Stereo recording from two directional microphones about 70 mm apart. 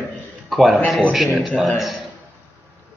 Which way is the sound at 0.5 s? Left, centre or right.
Centre.